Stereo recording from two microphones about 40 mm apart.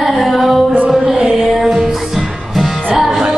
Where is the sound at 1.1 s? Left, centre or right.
Right.